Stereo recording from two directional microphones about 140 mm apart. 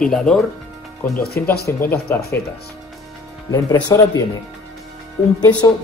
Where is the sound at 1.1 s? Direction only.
90° left.